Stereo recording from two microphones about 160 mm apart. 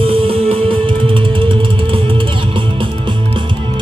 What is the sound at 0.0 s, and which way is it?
Music, 35° right (ahead or behind).